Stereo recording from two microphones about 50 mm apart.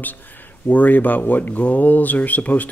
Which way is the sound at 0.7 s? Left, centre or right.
Left.